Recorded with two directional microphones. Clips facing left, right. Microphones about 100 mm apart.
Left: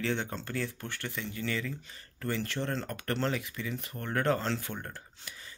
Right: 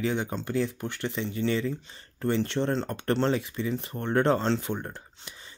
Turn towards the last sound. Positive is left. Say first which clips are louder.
# right 4 dB
turn(degrees=-20)  # may be behind; listen again after turning